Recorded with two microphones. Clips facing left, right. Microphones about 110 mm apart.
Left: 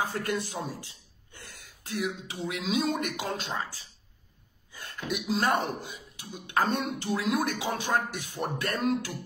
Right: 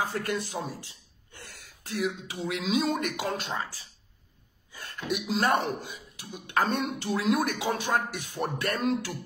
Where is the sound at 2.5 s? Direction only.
35° right (ahead or behind).